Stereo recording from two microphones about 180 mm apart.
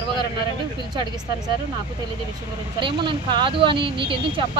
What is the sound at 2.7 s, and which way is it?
Speech, 30° right (ahead or behind).